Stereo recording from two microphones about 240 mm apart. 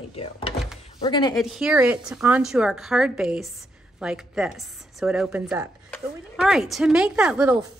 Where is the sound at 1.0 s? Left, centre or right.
Centre.